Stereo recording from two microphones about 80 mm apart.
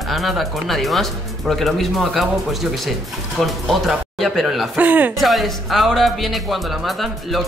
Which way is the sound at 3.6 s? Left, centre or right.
Centre.